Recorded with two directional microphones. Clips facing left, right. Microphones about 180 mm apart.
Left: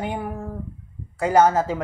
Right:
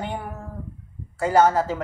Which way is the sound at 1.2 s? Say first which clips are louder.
Left 1 dB; 15° left (ahead or behind).